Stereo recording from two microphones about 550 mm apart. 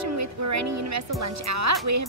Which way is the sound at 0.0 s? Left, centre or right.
Right.